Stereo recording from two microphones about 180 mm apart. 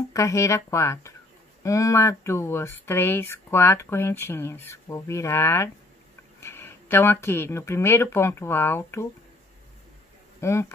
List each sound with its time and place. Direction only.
0.1 s speech: 15° left (ahead or behind)
10.4 s speech: 15° left (ahead or behind)